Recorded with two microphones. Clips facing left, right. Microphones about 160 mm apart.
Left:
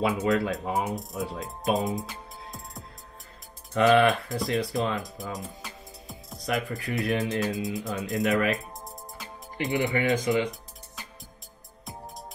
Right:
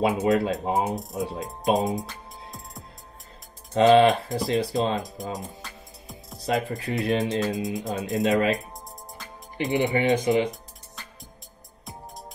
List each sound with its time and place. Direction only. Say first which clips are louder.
0.0 s speech: right 3 dB; 25° right (ahead or behind)
3.7 s speech: right 4 dB; 20° right (ahead or behind)
6.4 s speech: right 3 dB; 25° right (ahead or behind)